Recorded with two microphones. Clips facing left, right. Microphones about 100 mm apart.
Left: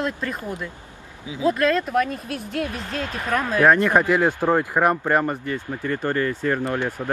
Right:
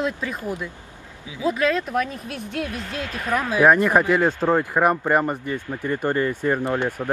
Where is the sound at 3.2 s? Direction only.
10° right (ahead or behind).